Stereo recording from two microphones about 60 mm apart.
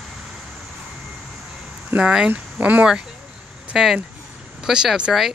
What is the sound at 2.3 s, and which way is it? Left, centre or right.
Speech, right.